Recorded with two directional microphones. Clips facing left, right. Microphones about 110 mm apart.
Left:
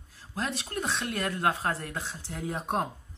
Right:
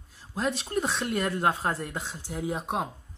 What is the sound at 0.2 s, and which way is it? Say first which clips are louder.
Speech: right 4 dB; 20° right (ahead or behind).